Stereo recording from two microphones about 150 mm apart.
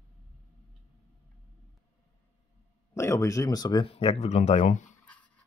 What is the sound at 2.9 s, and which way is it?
Speech, 20° left (ahead or behind).